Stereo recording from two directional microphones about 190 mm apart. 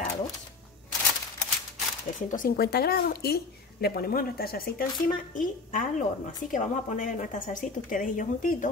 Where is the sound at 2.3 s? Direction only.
50° left (ahead or behind).